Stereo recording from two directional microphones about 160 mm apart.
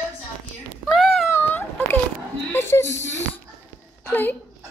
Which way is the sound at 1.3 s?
10° left (ahead or behind).